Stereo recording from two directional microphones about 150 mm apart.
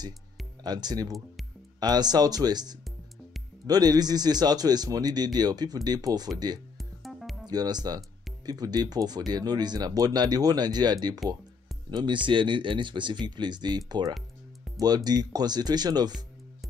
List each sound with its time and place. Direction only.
0.7 s a man's voice: 25° right (ahead or behind)
6.8 s music: centre (ahead or behind)
7.4 s a man's voice: 25° right (ahead or behind)